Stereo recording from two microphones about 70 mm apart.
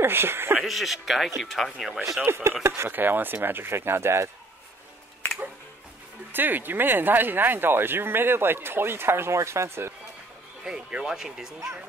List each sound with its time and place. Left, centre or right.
0.0 s speech: right
0.6 s speech: centre
2.2 s speech: right
6.3 s speech: right
10.6 s speech: centre